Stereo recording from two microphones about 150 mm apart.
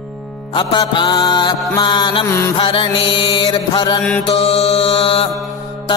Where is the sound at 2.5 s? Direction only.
35° left (ahead or behind).